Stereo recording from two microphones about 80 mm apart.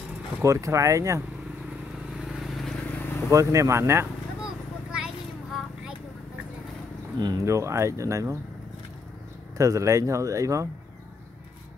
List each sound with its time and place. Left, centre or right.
0.4 s speech: right
2.1 s vehicle: centre
2.9 s vehicle: left
3.3 s speech: right
4.9 s a sound: centre
7.2 s speech: right
7.4 s speech: right
9.6 s speech: right